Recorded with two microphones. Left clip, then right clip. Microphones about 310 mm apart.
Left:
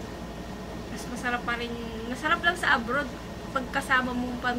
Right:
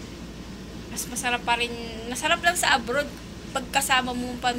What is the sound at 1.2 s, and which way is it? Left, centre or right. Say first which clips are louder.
A woman's voice: right 5 dB; centre.